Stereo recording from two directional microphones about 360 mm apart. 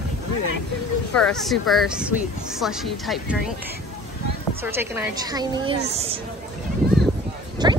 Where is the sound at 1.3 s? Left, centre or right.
Centre.